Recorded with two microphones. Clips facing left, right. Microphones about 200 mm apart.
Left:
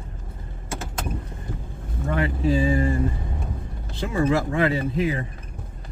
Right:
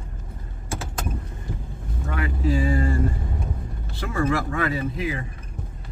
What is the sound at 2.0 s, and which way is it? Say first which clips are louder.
Speech: left 3 dB; 30° left (ahead or behind).